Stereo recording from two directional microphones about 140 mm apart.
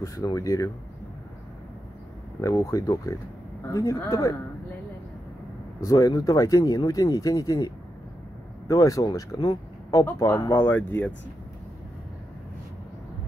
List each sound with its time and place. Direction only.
0.0 s speech: 25° left (ahead or behind)
2.4 s speech: 20° left (ahead or behind)
5.8 s speech: 25° left (ahead or behind)